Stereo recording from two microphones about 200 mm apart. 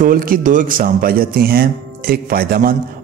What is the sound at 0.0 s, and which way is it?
Speech, 45° right (ahead or behind).